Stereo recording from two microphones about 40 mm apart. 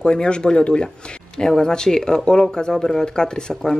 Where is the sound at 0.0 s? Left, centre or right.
Left.